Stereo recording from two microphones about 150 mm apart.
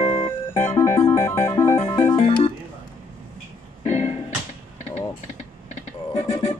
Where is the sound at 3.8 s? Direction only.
50° left (ahead or behind).